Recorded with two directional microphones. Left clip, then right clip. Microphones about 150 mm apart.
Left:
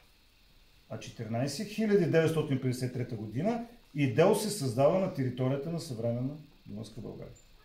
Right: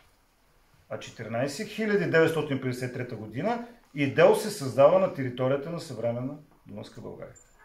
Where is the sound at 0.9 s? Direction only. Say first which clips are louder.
Right 5 dB; 15° left (ahead or behind).